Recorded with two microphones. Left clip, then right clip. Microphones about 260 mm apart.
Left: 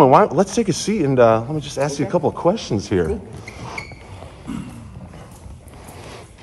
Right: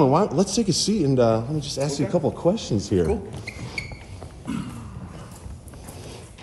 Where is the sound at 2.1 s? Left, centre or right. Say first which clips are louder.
Left 4 dB; left.